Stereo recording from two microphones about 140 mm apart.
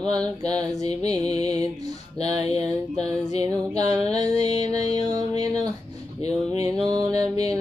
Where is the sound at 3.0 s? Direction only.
50° left (ahead or behind).